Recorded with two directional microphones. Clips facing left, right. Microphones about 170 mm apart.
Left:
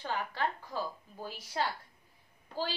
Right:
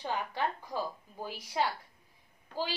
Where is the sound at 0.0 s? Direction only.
15° right (ahead or behind).